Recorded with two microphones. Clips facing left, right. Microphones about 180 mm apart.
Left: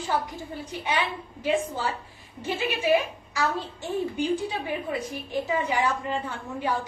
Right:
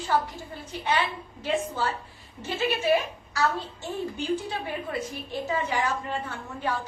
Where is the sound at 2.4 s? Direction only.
15° left (ahead or behind).